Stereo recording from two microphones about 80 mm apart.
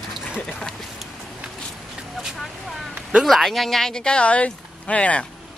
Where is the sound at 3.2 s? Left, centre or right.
Centre.